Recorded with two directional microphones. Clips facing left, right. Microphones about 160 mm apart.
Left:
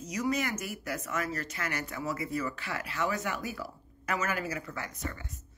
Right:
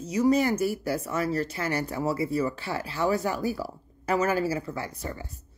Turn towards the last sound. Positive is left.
turn(degrees=-35)  # may be behind; listen again after turning